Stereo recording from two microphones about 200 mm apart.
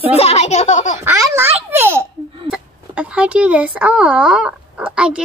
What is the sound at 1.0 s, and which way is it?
Babbling, 15° right (ahead or behind).